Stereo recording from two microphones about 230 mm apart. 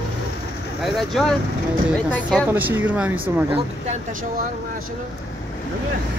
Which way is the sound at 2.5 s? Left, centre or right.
Centre.